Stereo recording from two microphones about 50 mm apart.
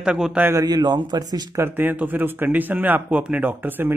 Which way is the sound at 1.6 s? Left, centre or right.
Right.